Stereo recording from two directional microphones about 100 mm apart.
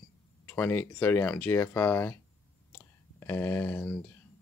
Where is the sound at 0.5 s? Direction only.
20° left (ahead or behind).